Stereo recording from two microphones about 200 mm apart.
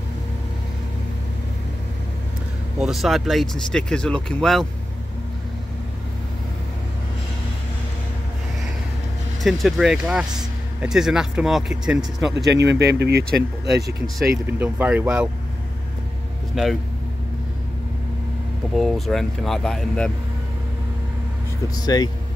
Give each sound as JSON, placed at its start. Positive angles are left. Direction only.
{"t": 2.8, "sound": "speech", "side_deg": 0}
{"t": 9.4, "sound": "speech", "side_deg": 0}
{"t": 12.4, "sound": "speech", "side_deg": -60}
{"t": 14.3, "sound": "speech", "side_deg": -10}
{"t": 16.5, "sound": "speech", "side_deg": 0}
{"t": 18.8, "sound": "speech", "side_deg": 0}
{"t": 21.8, "sound": "speech", "side_deg": 20}